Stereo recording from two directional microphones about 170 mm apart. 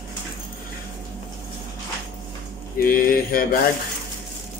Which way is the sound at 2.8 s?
55° left (ahead or behind).